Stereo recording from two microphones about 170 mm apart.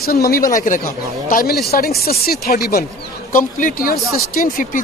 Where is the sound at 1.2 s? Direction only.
60° left (ahead or behind).